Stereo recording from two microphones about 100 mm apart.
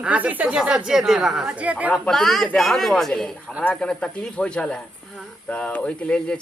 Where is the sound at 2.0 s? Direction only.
5° left (ahead or behind).